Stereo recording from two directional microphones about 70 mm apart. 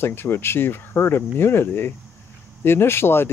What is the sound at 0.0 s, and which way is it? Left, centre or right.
Speech, left.